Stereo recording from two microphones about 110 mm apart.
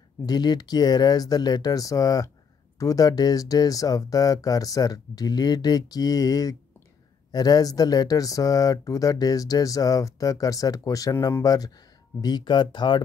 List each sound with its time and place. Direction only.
0.2 s speech: 40° left (ahead or behind)